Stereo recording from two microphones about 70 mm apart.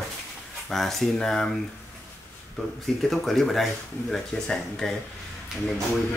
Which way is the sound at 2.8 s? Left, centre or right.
Centre.